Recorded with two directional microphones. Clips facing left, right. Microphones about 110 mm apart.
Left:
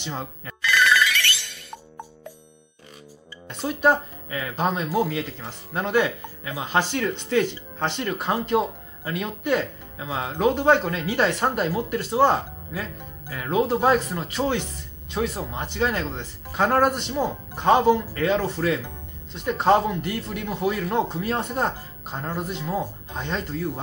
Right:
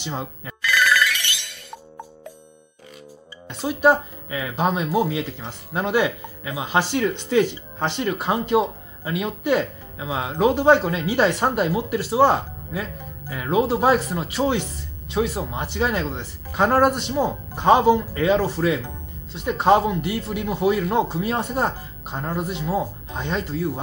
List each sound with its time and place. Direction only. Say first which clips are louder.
0.0 s speech: right 2 dB; 10° right (ahead or behind)
0.7 s ringtone: even; centre (ahead or behind)
1.1 s music: left 3 dB; 15° right (ahead or behind)
3.4 s speech: right 3 dB; 10° right (ahead or behind)